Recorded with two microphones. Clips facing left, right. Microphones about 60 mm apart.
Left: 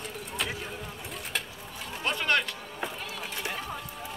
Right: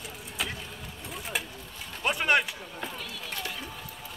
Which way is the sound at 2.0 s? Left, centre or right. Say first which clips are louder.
Right 2 dB; centre.